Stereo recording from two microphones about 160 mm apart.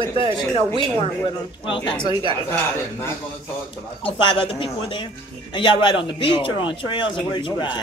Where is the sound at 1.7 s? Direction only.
30° left (ahead or behind).